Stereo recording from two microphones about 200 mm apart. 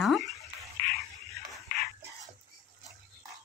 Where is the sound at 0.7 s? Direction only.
45° left (ahead or behind).